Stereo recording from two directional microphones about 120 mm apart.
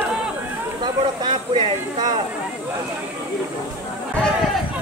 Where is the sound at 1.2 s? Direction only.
40° right (ahead or behind).